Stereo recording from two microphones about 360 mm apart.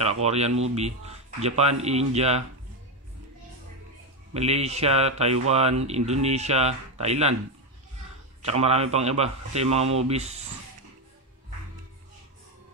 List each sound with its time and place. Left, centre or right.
0.0 s speech: centre
4.3 s speech: centre
8.4 s speech: centre